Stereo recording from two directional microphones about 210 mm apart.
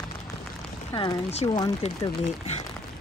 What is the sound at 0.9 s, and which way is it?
Speech, 25° left (ahead or behind).